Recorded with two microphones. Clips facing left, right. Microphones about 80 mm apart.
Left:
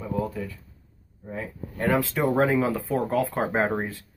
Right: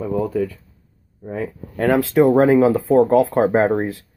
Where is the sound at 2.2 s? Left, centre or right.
Right.